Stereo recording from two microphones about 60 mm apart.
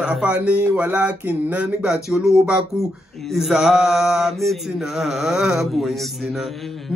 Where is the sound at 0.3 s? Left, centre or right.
Right.